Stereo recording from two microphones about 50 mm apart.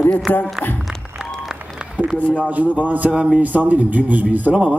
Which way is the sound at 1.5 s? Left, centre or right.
Centre.